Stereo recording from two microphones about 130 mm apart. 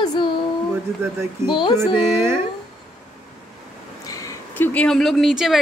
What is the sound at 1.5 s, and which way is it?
Speech, 40° left (ahead or behind).